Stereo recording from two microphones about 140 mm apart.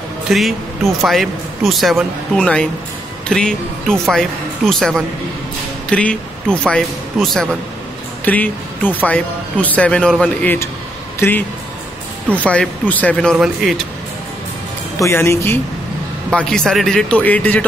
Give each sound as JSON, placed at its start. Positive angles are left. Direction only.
{"t": 0.3, "sound": "speech", "side_deg": 0}
{"t": 15.0, "sound": "speech", "side_deg": 20}